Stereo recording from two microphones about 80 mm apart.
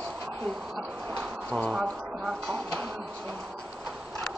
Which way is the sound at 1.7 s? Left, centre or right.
Centre.